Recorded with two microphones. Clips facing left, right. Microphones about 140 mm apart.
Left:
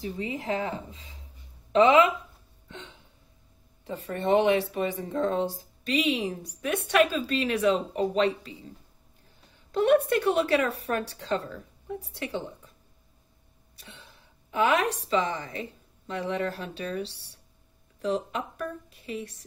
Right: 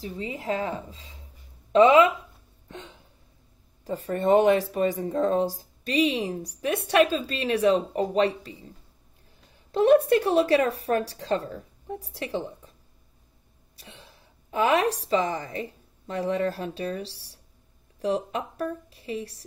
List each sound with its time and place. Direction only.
0.0 s speech: 35° right (ahead or behind)
3.8 s speech: 40° right (ahead or behind)
9.7 s speech: 35° right (ahead or behind)
13.7 s a woman's voice: 35° right (ahead or behind)